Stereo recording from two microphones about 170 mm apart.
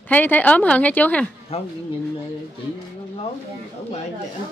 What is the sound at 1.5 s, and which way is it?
Speech, 35° left (ahead or behind).